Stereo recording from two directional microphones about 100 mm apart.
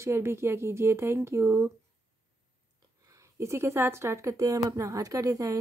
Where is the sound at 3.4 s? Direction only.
25° right (ahead or behind).